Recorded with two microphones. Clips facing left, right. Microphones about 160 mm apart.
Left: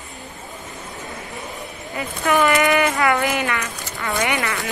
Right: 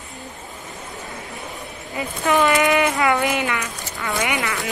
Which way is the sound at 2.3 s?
20° right (ahead or behind).